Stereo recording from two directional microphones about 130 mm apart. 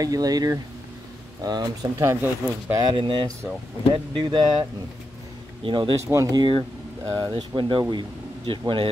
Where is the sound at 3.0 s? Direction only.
35° right (ahead or behind).